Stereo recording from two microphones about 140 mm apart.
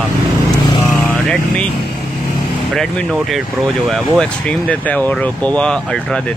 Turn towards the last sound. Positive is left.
turn(degrees=5)  # may be behind; listen again after turning